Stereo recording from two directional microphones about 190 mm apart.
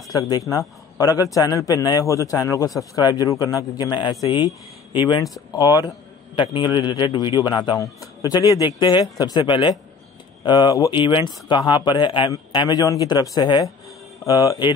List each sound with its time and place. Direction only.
0.1 s a man's voice: 20° left (ahead or behind)